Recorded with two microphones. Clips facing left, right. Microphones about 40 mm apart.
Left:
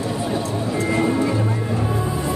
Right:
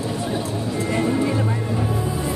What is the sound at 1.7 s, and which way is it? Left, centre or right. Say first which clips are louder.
Music: left 1 dB; centre.